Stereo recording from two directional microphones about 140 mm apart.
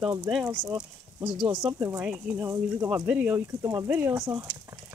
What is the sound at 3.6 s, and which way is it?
Speech, 25° right (ahead or behind).